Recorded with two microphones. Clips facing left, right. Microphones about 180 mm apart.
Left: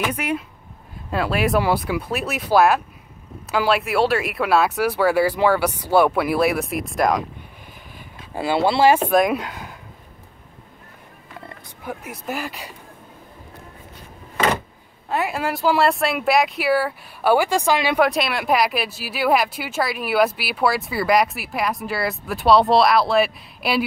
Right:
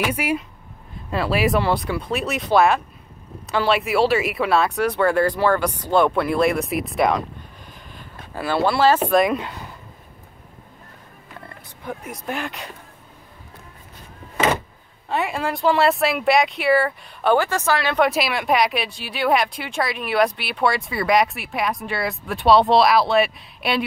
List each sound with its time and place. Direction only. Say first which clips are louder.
0.0 s speech: right 1 dB; 10° right (ahead or behind)
8.4 s speech: left 1 dB; 20° left (ahead or behind)
9.1 s speech: even; 5° left (ahead or behind)
11.8 s speech: even; 5° left (ahead or behind)
15.0 s speech: even; centre (ahead or behind)
18.0 s speech: even; centre (ahead or behind)